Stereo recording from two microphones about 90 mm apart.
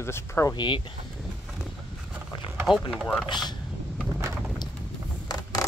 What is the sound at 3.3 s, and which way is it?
Speech, 50° left (ahead or behind).